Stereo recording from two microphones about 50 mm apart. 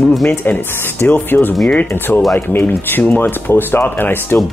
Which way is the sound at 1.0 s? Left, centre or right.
Left.